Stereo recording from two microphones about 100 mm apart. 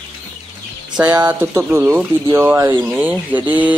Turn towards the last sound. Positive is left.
turn(degrees=-15)  # may be behind; listen again after turning